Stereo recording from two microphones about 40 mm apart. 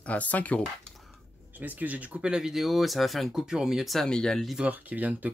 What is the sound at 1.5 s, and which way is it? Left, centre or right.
Speech, right.